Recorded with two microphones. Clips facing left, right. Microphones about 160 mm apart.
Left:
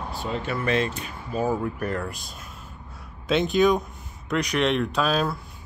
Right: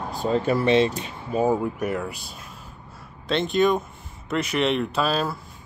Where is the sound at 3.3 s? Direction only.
Centre (ahead or behind).